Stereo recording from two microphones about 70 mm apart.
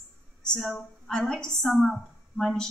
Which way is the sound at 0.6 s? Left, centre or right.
Centre.